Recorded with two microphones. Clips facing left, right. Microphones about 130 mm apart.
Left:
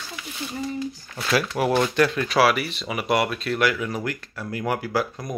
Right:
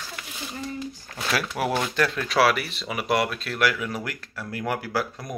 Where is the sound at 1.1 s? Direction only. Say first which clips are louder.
Left 4 dB; centre (ahead or behind).